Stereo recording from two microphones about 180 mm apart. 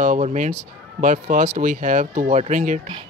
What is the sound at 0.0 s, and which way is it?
Speech, 45° right (ahead or behind).